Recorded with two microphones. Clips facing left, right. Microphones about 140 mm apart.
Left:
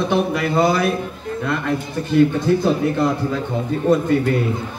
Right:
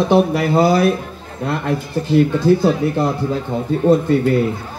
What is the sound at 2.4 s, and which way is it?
A man's voice, 35° right (ahead or behind).